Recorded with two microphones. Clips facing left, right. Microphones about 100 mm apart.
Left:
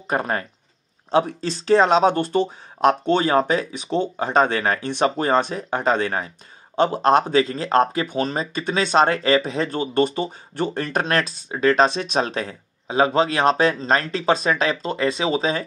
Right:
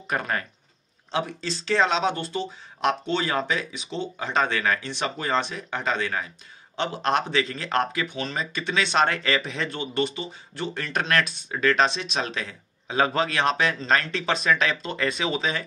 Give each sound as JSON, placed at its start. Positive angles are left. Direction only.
{"t": 0.1, "sound": "speech", "side_deg": 30}
{"t": 1.1, "sound": "speech", "side_deg": 45}
{"t": 12.8, "sound": "speech", "side_deg": 25}